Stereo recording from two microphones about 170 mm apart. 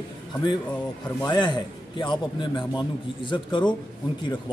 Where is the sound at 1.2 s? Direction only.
25° left (ahead or behind).